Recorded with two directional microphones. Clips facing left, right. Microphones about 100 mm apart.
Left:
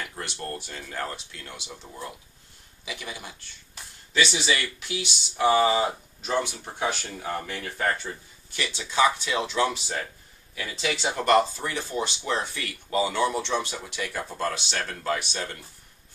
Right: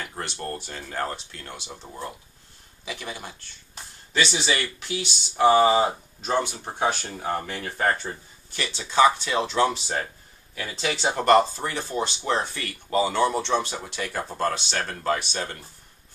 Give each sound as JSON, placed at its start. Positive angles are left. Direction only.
{"t": 0.0, "sound": "a sound", "side_deg": -30}
{"t": 0.7, "sound": "speech", "side_deg": -35}
{"t": 2.8, "sound": "speech", "side_deg": -40}